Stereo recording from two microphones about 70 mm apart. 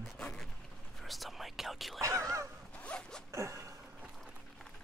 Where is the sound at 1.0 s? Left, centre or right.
Centre.